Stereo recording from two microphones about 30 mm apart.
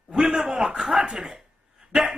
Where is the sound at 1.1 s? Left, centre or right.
Centre.